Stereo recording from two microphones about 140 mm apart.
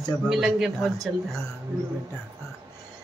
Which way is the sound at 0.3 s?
Centre (ahead or behind).